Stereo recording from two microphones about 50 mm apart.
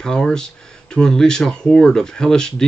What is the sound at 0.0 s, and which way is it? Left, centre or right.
Speech, centre.